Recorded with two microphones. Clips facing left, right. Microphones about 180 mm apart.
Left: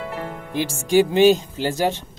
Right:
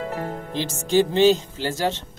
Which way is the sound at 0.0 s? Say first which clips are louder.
Right 1 dB; 40° right (ahead or behind).